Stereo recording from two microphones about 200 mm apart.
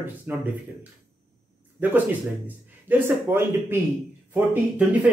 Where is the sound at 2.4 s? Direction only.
10° right (ahead or behind).